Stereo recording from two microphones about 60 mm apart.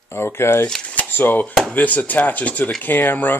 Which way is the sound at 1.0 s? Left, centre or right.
Left.